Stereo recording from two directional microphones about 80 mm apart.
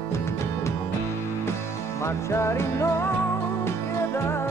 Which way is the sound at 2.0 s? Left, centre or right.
Left.